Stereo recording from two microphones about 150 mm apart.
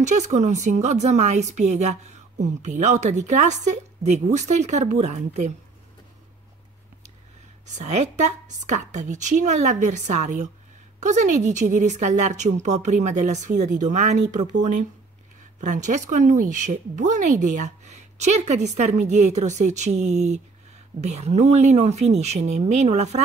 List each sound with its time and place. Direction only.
0.0 s a woman's voice: 50° right (ahead or behind)
7.6 s a woman's voice: 50° right (ahead or behind)